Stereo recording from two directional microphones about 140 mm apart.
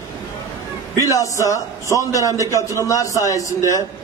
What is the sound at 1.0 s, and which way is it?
A man's voice, 25° left (ahead or behind).